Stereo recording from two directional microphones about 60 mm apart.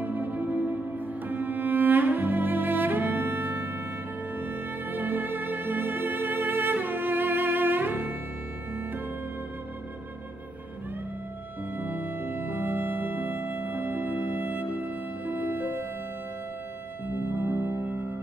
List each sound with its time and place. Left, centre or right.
0.0 s music: right
1.3 s cello: right
4.4 s music: right
11.7 s music: right
17.1 s music: right